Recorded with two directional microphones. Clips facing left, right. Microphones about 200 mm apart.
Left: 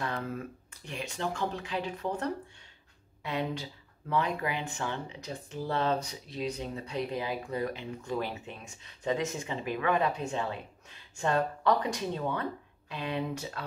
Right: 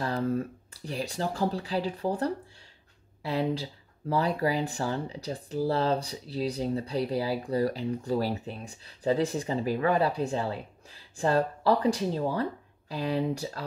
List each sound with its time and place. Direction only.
0.0 s speech: 35° right (ahead or behind)